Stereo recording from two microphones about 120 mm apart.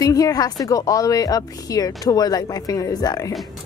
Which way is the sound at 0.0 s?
30° left (ahead or behind).